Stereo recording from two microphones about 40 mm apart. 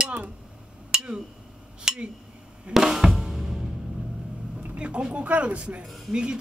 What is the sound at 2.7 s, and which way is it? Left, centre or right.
Drum, centre.